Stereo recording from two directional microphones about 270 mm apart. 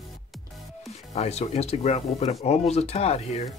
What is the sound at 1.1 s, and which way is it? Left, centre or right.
Speech, left.